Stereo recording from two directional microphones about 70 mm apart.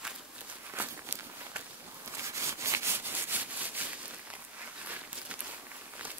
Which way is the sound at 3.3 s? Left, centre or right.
Right.